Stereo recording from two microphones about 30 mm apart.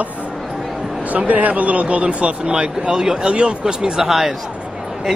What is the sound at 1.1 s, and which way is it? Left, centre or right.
Speech, right.